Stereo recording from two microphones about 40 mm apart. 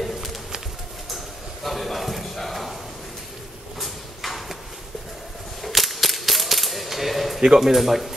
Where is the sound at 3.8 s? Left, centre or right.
Centre.